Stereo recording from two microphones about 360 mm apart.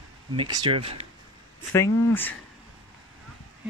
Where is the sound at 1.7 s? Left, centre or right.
Centre.